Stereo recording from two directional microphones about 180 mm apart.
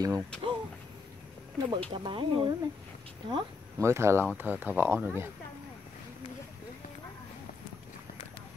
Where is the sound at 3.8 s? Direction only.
15° right (ahead or behind).